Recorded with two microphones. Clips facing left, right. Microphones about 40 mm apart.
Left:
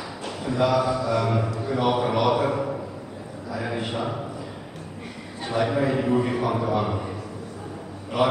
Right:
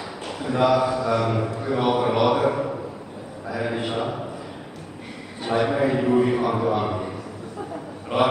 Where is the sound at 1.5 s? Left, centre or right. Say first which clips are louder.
Right 1 dB; right.